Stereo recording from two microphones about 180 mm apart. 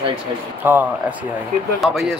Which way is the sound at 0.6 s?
10° right (ahead or behind).